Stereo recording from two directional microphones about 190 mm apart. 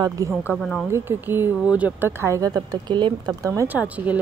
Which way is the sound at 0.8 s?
10° right (ahead or behind).